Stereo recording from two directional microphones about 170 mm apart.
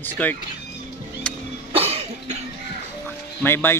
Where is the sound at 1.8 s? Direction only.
35° right (ahead or behind).